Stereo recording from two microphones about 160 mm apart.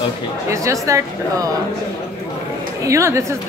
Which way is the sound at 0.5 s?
20° right (ahead or behind).